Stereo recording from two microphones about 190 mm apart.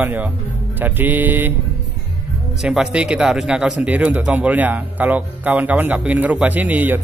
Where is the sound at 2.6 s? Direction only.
5° right (ahead or behind).